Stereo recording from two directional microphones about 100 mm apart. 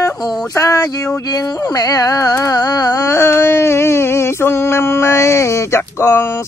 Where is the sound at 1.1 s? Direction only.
35° left (ahead or behind).